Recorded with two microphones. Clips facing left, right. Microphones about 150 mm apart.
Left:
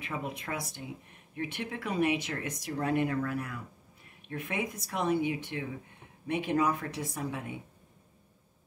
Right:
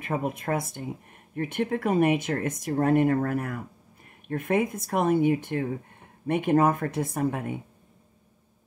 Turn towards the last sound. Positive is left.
turn(degrees=-50)  # may be behind; listen again after turning